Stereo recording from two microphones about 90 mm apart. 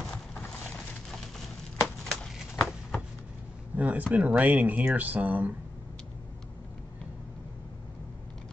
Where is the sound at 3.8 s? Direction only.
15° right (ahead or behind).